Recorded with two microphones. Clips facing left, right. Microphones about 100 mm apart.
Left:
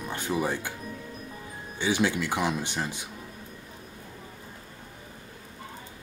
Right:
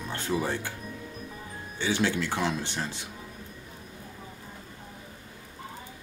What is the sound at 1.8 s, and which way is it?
Speech, 15° left (ahead or behind).